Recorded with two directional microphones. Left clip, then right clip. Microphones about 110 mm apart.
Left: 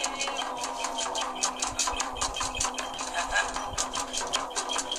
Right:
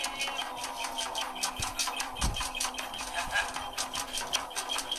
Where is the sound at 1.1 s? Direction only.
55° left (ahead or behind).